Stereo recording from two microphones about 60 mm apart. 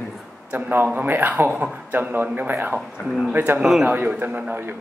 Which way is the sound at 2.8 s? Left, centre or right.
Centre.